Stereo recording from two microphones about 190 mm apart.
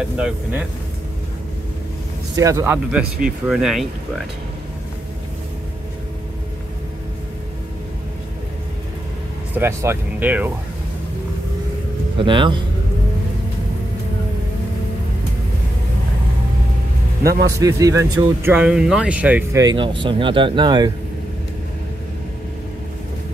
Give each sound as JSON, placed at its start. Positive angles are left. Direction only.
{"t": 0.2, "sound": "speech", "side_deg": -5}
{"t": 2.3, "sound": "speech", "side_deg": -15}
{"t": 9.6, "sound": "speech", "side_deg": -15}
{"t": 12.2, "sound": "speech", "side_deg": -25}
{"t": 17.2, "sound": "a man's voice", "side_deg": -55}
{"t": 17.6, "sound": "speech", "side_deg": -15}
{"t": 19.6, "sound": "speech", "side_deg": -25}